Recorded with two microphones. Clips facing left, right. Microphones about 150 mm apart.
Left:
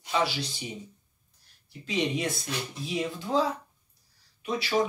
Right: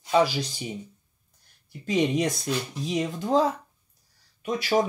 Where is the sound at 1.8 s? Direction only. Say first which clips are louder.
Right 5 dB; 45° right (ahead or behind).